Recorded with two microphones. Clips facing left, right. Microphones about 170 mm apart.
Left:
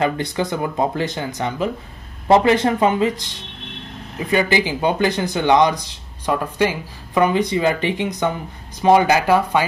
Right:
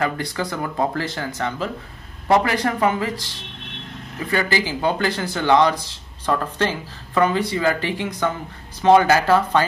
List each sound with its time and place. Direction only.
0.0 s speech: 20° left (ahead or behind)